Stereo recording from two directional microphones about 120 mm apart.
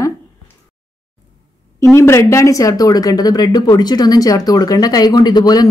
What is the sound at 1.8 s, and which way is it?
Speech, 25° left (ahead or behind).